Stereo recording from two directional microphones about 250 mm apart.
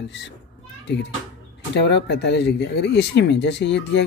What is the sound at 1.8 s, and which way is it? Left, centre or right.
Speech, left.